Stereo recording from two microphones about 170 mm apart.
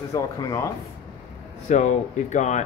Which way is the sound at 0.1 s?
20° left (ahead or behind).